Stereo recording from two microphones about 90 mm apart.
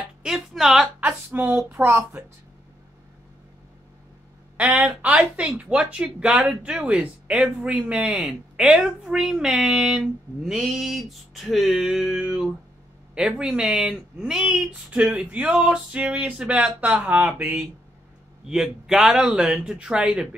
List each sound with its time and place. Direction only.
0.2 s a sound: 5° right (ahead or behind)
1.0 s a woman's voice: 20° right (ahead or behind)
1.7 s speech: 30° right (ahead or behind)
4.6 s a woman's voice: 15° right (ahead or behind)
18.5 s speech: 5° right (ahead or behind)